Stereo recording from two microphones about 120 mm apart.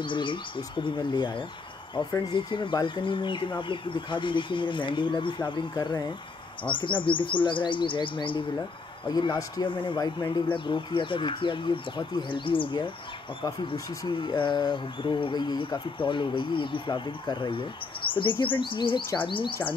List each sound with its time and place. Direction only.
0.0 s speech: 45° left (ahead or behind)